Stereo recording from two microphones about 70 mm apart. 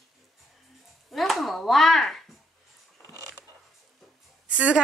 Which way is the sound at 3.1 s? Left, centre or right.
Right.